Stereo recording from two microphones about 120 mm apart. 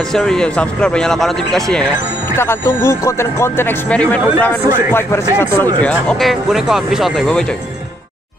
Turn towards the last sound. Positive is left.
turn(degrees=0)  # may be behind; listen again after turning